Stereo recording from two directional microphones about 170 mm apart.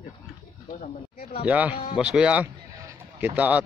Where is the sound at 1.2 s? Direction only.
35° left (ahead or behind).